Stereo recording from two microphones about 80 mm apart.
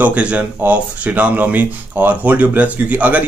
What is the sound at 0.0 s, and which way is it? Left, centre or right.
Speech, centre.